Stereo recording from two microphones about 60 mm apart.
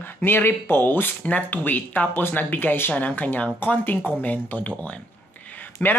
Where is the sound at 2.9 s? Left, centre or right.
Left.